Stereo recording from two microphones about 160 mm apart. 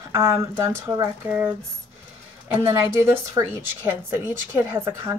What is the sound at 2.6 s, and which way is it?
Speech, 15° right (ahead or behind).